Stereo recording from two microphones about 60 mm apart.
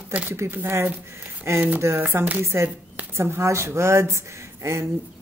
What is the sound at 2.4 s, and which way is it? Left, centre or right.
A woman's voice, right.